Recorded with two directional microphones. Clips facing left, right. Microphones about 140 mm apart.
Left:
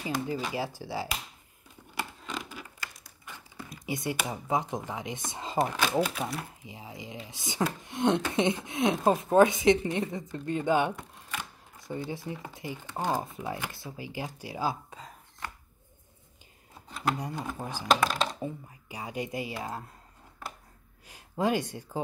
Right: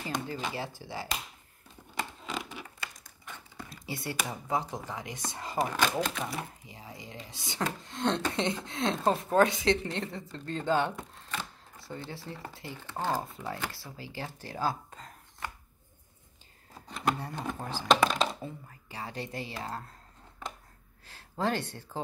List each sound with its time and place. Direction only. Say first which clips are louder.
0.0 s speech: left 3 dB; 10° left (ahead or behind)
2.2 s a sound: right 1 dB; centre (ahead or behind)
3.0 s speech: even; 10° left (ahead or behind)
5.6 s speech: left 2 dB; 5° left (ahead or behind)
6.6 s speech: left 3 dB; 15° left (ahead or behind)
17.2 s speech: left 1 dB; 10° left (ahead or behind)
18.1 s speech: right 1 dB; centre (ahead or behind)
18.4 s speech: left 5 dB; 15° left (ahead or behind)
21.1 s speech: left 3 dB; 15° left (ahead or behind)